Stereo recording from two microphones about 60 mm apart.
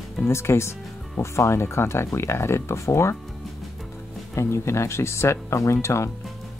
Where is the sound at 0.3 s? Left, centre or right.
Left.